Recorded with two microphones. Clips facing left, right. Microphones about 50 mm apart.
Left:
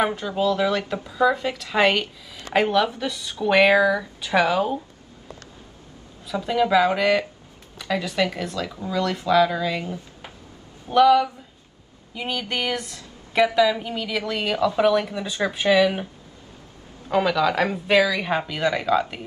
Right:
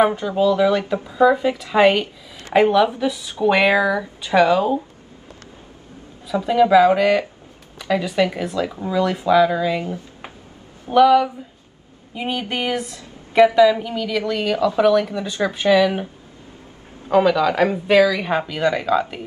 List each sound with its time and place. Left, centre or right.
0.0 s speech: centre
0.9 s speech: centre
4.4 s a woman's voice: centre
6.4 s a woman's voice: centre
10.9 s speech: centre
12.1 s a woman's voice: centre
17.1 s a woman's voice: centre